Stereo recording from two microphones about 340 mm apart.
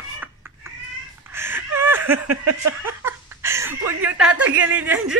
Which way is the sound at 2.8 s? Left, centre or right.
Centre.